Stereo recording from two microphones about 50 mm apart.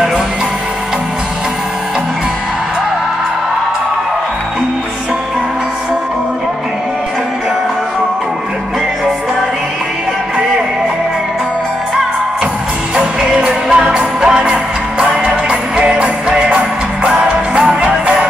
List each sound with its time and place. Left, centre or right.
12.9 s music: centre